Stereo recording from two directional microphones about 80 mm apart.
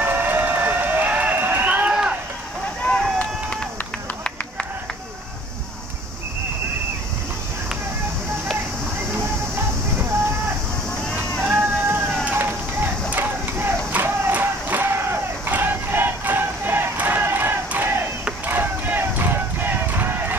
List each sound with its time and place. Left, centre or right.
0.0 s a sound: right
2.8 s run: centre
11.4 s run: right
13.1 s crowd: right
18.5 s run: right